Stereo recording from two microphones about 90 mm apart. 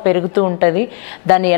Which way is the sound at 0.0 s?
15° left (ahead or behind).